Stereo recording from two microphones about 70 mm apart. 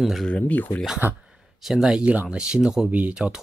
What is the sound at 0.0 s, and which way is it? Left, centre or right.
Speech, centre.